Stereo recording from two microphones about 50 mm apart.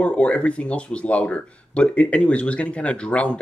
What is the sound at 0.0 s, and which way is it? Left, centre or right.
Speech, left.